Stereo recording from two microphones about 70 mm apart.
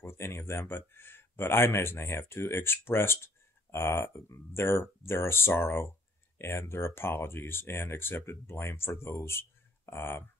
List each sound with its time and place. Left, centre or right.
0.0 s speech: left